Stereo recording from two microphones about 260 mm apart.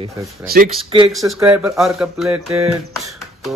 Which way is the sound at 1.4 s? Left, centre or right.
Centre.